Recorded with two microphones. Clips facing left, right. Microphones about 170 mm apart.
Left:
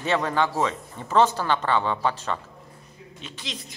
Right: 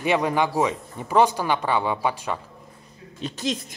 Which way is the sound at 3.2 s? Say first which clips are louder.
Right 12 dB; 45° right (ahead or behind).